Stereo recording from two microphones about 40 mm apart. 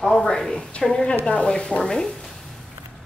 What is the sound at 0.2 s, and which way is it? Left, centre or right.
A woman's voice, centre.